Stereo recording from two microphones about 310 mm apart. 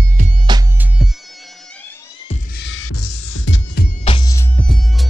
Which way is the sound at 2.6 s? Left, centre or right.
Left.